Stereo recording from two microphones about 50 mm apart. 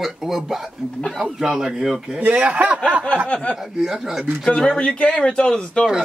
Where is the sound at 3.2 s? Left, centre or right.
Left.